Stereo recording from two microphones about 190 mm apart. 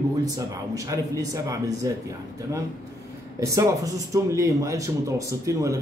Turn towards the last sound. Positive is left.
turn(degrees=-15)  # may be behind; listen again after turning